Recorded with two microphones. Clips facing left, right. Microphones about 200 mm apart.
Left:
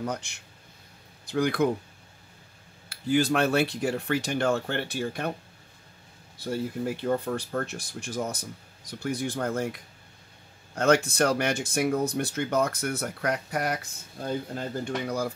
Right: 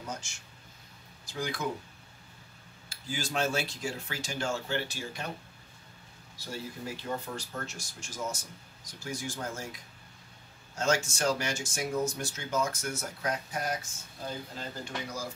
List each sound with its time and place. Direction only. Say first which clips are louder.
0.0 s speech: left 8 dB; 60° left (ahead or behind)
2.9 s speech: left 12 dB; 60° left (ahead or behind)
6.3 s a man's voice: left 10 dB; 55° left (ahead or behind)